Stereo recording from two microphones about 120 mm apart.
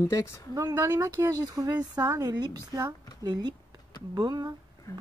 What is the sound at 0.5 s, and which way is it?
A woman's voice, 25° right (ahead or behind).